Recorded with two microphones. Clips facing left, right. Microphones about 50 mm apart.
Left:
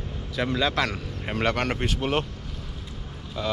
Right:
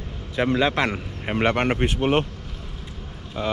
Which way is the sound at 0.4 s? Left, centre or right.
Right.